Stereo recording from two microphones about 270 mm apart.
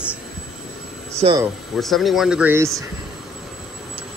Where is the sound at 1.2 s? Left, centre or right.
Centre.